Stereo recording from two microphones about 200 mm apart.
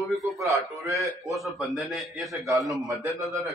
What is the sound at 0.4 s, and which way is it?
Speech, 15° right (ahead or behind).